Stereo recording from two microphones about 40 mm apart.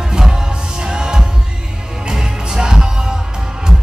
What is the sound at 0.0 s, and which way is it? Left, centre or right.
Music, centre.